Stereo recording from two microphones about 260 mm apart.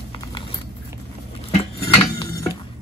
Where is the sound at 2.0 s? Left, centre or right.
Centre.